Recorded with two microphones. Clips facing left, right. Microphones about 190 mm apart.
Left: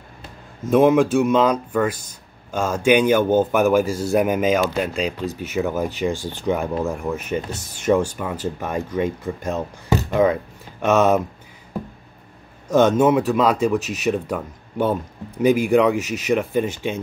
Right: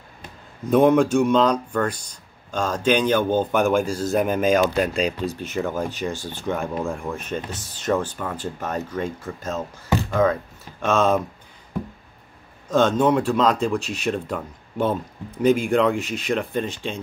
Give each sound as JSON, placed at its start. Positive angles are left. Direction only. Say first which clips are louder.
{"t": 0.7, "sound": "speech", "louder": "left 1 dB", "side_deg": 5}
{"t": 12.6, "sound": "speech", "louder": "left 3 dB", "side_deg": 10}